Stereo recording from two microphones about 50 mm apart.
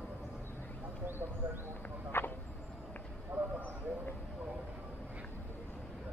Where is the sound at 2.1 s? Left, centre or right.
Left.